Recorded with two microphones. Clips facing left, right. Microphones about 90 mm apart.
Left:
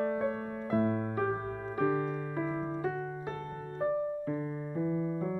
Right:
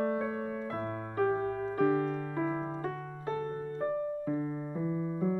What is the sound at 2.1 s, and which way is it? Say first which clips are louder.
Keyboard: right 1 dB; centre (ahead or behind).